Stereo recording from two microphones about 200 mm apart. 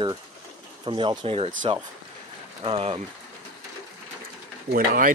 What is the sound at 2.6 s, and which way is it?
Speech, 30° right (ahead or behind).